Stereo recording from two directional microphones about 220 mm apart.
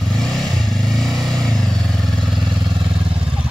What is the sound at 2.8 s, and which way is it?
Vehicle, 20° right (ahead or behind).